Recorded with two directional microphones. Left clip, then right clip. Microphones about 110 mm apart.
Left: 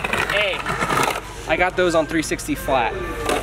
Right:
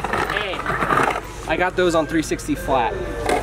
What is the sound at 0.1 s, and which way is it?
Vehicle, 5° left (ahead or behind).